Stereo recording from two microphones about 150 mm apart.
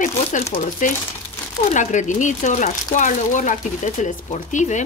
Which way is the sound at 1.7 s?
55° left (ahead or behind).